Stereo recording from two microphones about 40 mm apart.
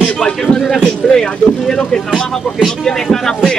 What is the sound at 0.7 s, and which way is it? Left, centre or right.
Speech, centre.